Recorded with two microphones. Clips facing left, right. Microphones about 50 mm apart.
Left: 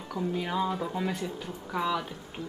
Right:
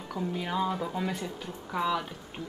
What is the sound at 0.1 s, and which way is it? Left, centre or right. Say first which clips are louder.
Speech: left 1 dB; centre.